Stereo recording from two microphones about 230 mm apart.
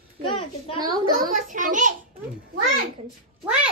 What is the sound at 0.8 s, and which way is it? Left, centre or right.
Speech, centre.